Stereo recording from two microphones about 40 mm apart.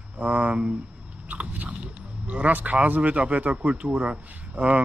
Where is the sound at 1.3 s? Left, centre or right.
Right.